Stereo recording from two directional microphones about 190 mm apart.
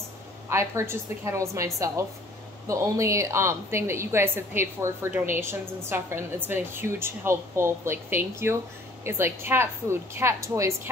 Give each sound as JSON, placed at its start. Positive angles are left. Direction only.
{"t": 0.5, "sound": "a woman's voice", "side_deg": -15}
{"t": 2.7, "sound": "a woman's voice", "side_deg": -15}